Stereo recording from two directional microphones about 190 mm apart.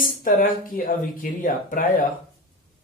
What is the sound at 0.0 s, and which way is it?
Speech, 45° left (ahead or behind).